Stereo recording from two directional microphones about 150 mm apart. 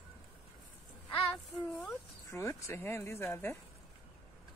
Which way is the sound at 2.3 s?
20° left (ahead or behind).